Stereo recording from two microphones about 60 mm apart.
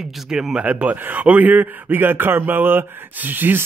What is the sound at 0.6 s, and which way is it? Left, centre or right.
A man's voice, right.